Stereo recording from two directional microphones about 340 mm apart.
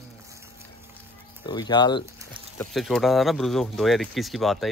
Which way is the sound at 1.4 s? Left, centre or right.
Centre.